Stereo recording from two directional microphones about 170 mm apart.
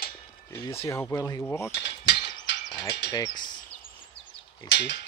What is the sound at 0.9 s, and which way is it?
Speech, 15° left (ahead or behind).